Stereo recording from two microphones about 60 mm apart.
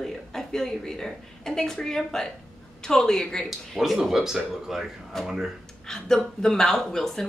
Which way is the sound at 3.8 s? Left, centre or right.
Centre.